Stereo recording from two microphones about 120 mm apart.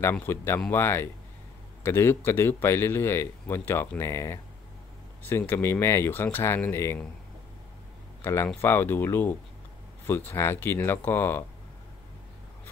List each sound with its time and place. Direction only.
0.0 s speech: 20° left (ahead or behind)
5.4 s speech: 20° left (ahead or behind)
8.2 s speech: 20° left (ahead or behind)